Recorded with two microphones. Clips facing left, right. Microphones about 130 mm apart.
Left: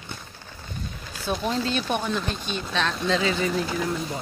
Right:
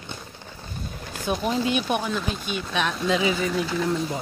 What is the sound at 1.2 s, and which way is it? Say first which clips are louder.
Speech: right 2 dB; 15° right (ahead or behind).